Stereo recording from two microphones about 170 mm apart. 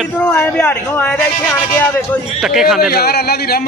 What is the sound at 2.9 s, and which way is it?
Speech, 65° left (ahead or behind).